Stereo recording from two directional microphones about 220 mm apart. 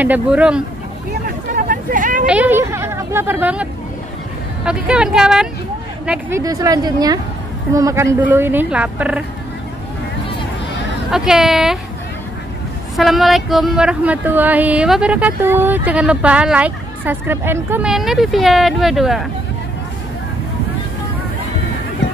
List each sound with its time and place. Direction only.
0.0 s speech: 5° right (ahead or behind)
1.2 s vehicle: 40° right (ahead or behind)
2.2 s a sound: 5° right (ahead or behind)
4.6 s speech: 5° right (ahead or behind)
6.4 s speech: 15° right (ahead or behind)
11.1 s speech: centre (ahead or behind)
12.9 s speech: centre (ahead or behind)